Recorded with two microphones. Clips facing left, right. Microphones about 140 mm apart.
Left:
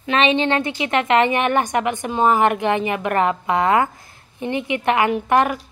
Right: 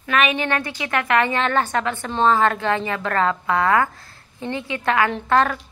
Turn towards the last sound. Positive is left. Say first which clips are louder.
# left 2 dB
turn(degrees=15)  # may be behind; listen again after turning